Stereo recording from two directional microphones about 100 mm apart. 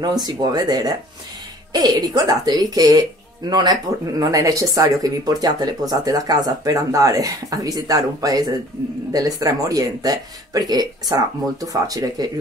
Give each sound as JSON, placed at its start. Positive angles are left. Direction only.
{"t": 0.0, "sound": "speech", "side_deg": -40}